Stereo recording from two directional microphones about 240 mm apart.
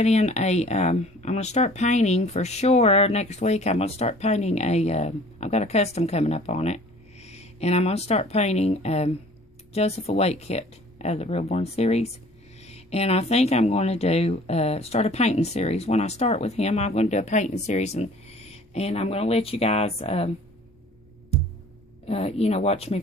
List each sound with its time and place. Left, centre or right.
0.0 s speech: left
22.0 s speech: left